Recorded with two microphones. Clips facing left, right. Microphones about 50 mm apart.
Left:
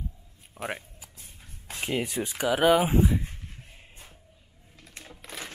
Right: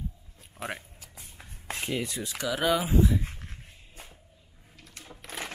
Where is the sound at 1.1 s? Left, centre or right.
Right.